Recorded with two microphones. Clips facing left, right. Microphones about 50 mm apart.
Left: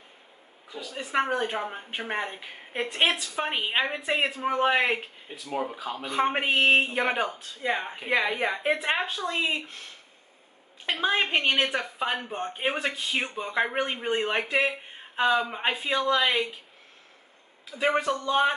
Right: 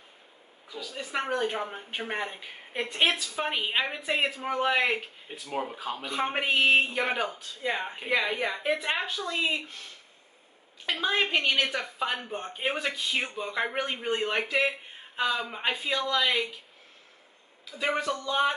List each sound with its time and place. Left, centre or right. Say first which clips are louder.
1.2 s a woman's voice: left 1 dB; centre
5.4 s speech: left 2 dB; centre
6.0 s a woman's voice: left 5 dB; centre
6.4 s speech: right 1 dB; left
7.8 s speech: right 1 dB; centre
8.4 s speech: left 2 dB; left
10.9 s a woman's voice: left 2 dB; centre
17.6 s speech: left 4 dB; left